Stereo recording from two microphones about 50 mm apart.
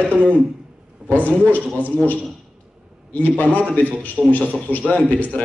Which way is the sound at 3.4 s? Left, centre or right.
Right.